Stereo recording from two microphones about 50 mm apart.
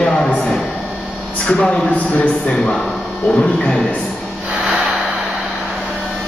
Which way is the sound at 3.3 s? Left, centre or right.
Centre.